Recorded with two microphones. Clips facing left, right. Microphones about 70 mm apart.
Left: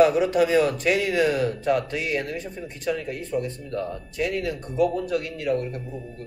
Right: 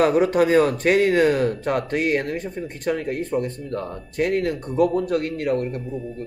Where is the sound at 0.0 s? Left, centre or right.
Right.